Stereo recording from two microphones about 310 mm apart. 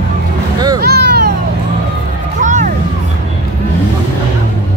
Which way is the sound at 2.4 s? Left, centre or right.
Right.